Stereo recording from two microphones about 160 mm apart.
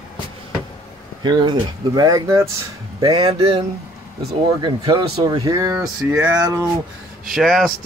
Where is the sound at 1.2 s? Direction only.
30° right (ahead or behind).